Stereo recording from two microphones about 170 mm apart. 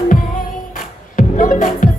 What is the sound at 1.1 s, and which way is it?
Music, 50° left (ahead or behind).